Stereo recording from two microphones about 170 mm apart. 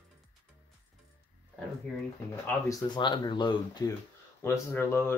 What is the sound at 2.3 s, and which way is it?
Speech, 15° left (ahead or behind).